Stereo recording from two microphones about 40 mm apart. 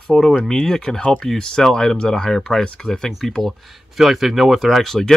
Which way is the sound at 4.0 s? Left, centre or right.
Centre.